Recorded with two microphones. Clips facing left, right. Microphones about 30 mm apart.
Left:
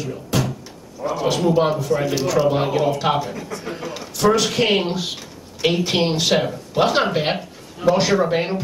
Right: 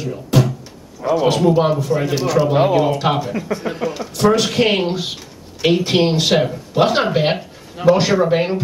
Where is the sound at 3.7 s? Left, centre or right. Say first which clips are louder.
Right 6 dB; centre.